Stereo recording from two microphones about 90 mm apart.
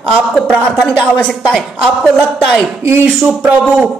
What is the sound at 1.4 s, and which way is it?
A woman's voice, centre (ahead or behind).